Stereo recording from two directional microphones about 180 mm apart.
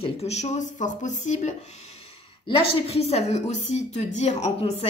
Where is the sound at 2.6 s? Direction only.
30° left (ahead or behind).